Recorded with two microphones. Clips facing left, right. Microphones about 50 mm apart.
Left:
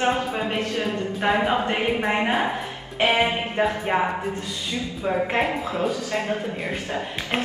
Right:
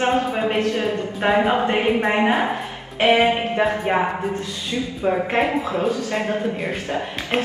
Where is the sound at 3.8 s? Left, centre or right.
Centre.